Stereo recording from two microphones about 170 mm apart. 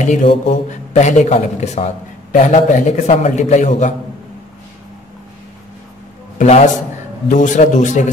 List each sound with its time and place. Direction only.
0.0 s a man's voice: 45° left (ahead or behind)
6.3 s a man's voice: 45° left (ahead or behind)